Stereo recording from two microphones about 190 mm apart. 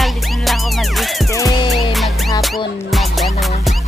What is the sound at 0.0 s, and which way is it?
Music, centre (ahead or behind).